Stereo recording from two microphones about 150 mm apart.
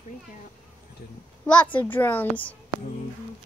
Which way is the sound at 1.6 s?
10° left (ahead or behind).